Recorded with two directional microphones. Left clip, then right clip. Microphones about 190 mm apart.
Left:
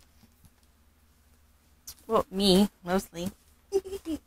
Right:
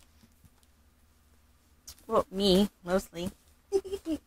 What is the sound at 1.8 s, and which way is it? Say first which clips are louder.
Speech: left 1 dB; 20° left (ahead or behind).